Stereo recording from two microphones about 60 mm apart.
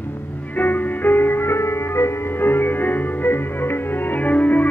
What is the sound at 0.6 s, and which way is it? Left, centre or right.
Music, left.